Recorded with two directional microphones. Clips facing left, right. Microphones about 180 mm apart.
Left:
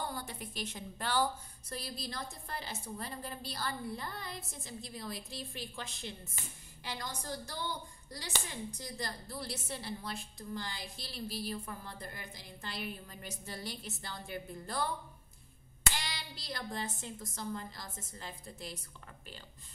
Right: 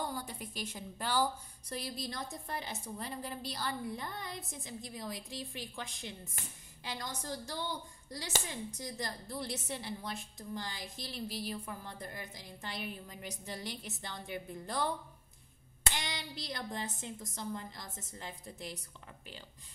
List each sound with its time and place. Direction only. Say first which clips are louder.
0.1 s a woman's voice: right 1 dB; 10° right (ahead or behind)
8.7 s a woman's voice: right 1 dB; 20° right (ahead or behind)